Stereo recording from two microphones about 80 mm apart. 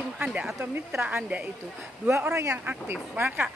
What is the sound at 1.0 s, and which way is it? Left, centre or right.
Speech, right.